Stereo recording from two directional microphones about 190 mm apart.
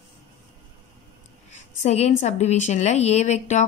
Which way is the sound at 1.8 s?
35° left (ahead or behind).